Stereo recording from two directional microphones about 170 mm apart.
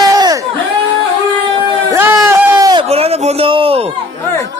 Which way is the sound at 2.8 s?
35° right (ahead or behind).